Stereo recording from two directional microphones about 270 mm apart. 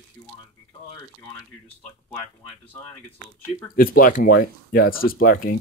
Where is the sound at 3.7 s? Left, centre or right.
Left.